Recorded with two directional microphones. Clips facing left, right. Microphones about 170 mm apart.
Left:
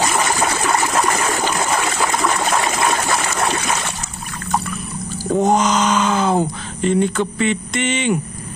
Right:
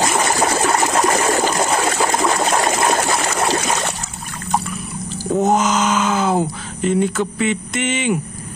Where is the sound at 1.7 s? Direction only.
35° right (ahead or behind).